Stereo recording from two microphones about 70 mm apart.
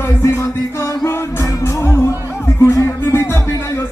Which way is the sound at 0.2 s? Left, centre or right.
Left.